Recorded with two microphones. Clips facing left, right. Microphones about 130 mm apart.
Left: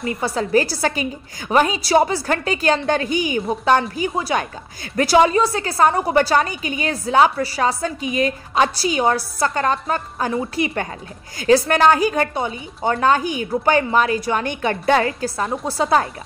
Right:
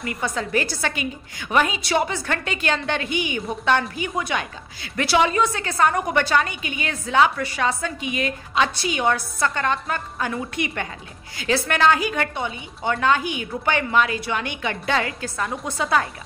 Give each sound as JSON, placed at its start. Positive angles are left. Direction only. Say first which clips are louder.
{"t": 0.0, "sound": "a woman's voice", "louder": "left 4 dB", "side_deg": 30}
{"t": 15.0, "sound": "a woman's voice", "louder": "left 5 dB", "side_deg": 35}